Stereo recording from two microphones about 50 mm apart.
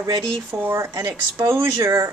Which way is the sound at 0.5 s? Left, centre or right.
Right.